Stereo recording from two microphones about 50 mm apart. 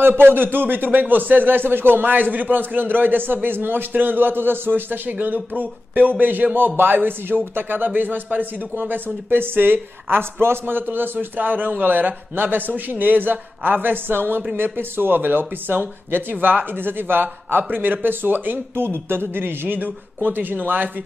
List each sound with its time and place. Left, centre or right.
0.2 s a man's voice: right